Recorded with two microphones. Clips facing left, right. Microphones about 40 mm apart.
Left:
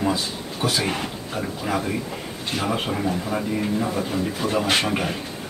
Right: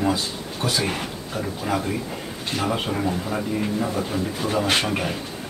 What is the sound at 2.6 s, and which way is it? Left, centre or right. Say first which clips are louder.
Speech: even; centre.